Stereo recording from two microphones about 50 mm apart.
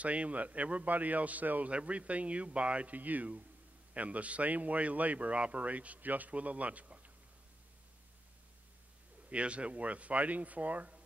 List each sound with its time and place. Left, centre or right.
0.0 s a man's voice: right
9.3 s speech: right